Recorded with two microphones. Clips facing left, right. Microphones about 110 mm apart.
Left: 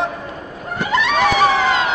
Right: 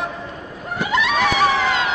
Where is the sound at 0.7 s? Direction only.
Centre (ahead or behind).